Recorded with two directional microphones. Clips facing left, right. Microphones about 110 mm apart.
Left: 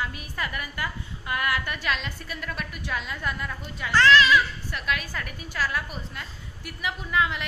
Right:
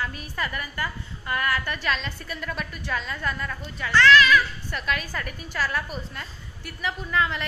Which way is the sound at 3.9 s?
30° left (ahead or behind).